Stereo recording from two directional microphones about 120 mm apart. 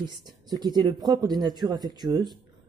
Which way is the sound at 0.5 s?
35° right (ahead or behind).